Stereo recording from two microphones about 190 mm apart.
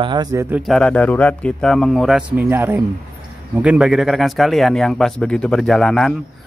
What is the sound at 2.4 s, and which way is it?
Speech, 10° right (ahead or behind).